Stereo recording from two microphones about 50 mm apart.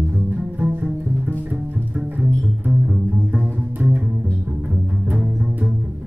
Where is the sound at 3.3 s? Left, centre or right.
Right.